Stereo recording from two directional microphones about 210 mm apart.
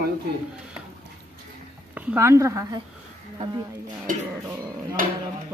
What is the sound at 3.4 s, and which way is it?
Speech, 35° right (ahead or behind).